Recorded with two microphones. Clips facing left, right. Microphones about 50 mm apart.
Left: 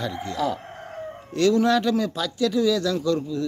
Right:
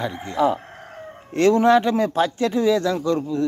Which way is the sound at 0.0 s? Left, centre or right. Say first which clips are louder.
Right 5 dB; right.